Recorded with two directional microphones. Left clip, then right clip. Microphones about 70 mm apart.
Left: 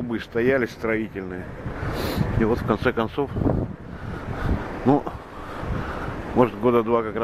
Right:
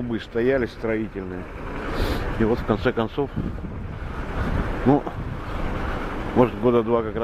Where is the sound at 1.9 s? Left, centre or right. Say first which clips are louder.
Even; left.